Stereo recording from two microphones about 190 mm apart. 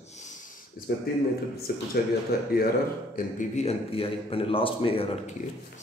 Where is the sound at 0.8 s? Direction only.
50° left (ahead or behind).